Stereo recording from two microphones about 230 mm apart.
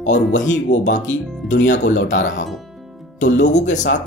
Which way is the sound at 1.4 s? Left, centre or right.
Centre.